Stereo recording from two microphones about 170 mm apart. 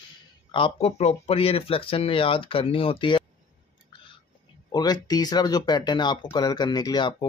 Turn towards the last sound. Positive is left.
turn(degrees=25)  # may be behind; listen again after turning